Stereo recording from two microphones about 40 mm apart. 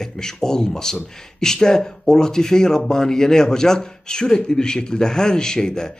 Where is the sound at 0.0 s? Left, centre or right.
Centre.